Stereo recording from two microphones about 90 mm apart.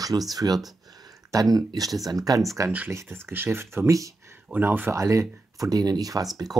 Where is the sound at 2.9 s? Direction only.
25° right (ahead or behind).